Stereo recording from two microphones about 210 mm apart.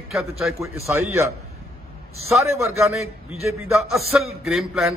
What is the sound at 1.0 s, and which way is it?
Speech, 10° right (ahead or behind).